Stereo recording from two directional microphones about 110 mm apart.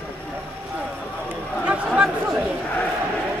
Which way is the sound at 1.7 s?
5° right (ahead or behind).